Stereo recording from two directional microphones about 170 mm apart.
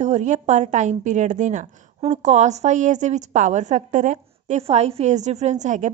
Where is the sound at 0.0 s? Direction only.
45° right (ahead or behind).